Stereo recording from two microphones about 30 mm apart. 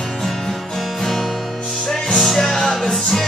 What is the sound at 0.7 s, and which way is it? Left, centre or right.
Music, centre.